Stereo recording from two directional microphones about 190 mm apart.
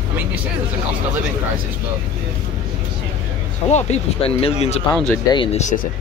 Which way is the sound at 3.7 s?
35° left (ahead or behind).